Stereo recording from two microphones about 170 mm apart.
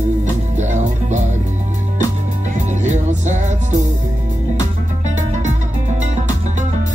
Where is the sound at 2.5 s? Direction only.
45° right (ahead or behind).